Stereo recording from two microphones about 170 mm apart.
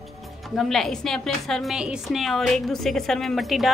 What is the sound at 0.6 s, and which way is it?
A woman's voice, centre (ahead or behind).